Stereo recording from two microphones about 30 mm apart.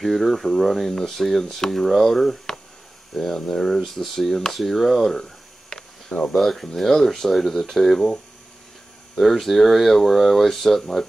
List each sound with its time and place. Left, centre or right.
0.0 s speech: centre
0.8 s speech: centre
3.2 s speech: centre
5.7 s a sound: centre
6.3 s speech: centre
9.2 s speech: centre